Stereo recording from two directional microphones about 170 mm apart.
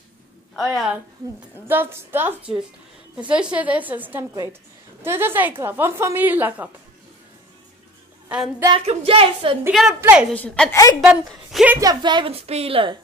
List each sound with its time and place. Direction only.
0.6 s a woman's voice: 5° right (ahead or behind)
8.3 s a woman's voice: 5° right (ahead or behind)
8.6 s speech: 30° right (ahead or behind)
9.7 s a woman's voice: centre (ahead or behind)
10.3 s a woman's voice: 10° left (ahead or behind)
11.0 s a woman's voice: centre (ahead or behind)
11.7 s a woman's voice: 20° right (ahead or behind)